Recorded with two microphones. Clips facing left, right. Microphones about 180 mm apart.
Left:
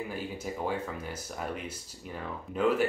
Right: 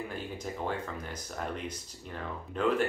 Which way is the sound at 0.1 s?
5° left (ahead or behind).